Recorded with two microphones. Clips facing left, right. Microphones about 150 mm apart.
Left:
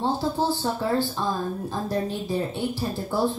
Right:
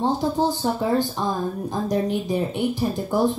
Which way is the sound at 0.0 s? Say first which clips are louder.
Right 3 dB; 15° right (ahead or behind).